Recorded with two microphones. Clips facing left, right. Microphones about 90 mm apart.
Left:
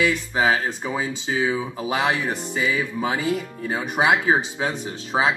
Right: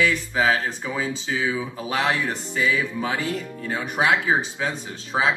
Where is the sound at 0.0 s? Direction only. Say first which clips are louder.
Left 1 dB; 15° left (ahead or behind).